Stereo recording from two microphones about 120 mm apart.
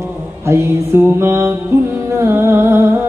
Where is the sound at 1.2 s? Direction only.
20° right (ahead or behind).